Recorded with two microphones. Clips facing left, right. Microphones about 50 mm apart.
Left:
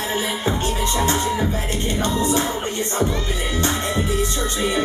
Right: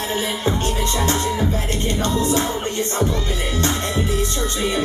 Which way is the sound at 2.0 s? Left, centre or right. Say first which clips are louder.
Even; centre.